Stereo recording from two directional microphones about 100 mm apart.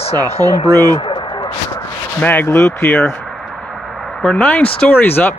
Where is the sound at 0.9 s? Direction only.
55° left (ahead or behind).